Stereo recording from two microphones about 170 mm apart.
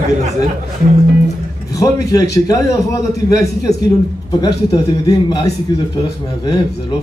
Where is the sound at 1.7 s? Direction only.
20° left (ahead or behind).